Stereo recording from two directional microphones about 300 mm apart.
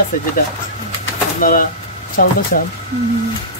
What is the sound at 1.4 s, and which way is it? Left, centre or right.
Speech, left.